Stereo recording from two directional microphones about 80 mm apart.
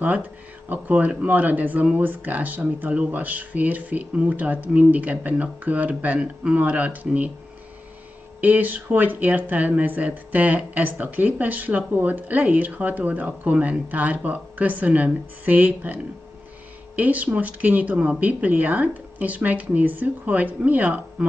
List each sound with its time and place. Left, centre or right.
0.7 s speech: centre
8.4 s speech: right